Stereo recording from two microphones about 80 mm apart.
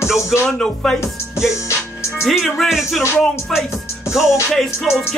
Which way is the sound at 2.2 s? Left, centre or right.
Centre.